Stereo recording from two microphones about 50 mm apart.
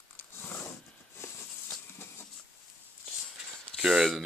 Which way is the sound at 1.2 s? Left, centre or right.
Left.